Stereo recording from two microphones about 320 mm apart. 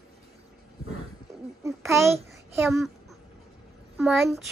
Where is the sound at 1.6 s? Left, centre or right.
Centre.